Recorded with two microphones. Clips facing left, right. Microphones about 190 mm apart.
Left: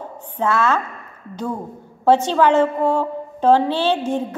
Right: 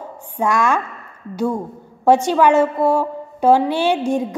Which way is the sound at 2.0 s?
10° right (ahead or behind).